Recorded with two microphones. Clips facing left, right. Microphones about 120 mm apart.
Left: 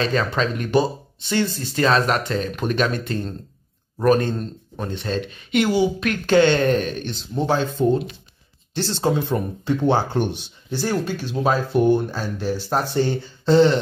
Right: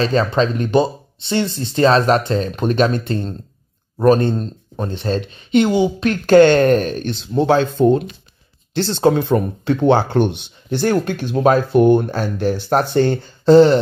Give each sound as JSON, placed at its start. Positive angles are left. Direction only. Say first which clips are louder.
{"t": 0.0, "sound": "speech", "louder": "right 5 dB", "side_deg": -30}
{"t": 6.2, "sound": "speech", "louder": "right 6 dB", "side_deg": -45}
{"t": 7.1, "sound": "speech", "louder": "right 9 dB", "side_deg": -70}